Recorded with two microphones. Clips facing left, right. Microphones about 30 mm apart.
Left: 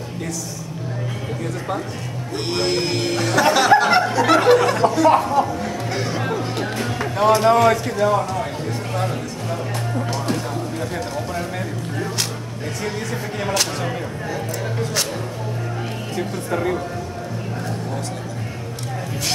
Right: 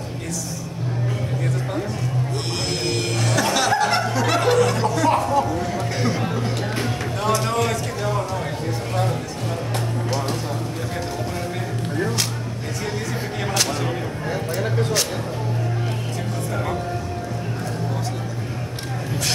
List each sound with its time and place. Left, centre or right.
2.5 s speech: centre
5.9 s music: centre
7.4 s speech: centre
13.4 s speech: centre